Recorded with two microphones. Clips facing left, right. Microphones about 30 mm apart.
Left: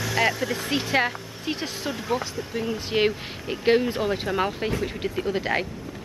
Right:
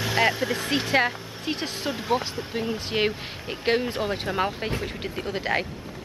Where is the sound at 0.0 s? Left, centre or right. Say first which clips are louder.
Right 1 dB; centre.